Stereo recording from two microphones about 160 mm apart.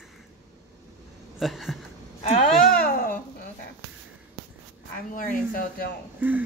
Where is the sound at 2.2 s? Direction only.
45° left (ahead or behind).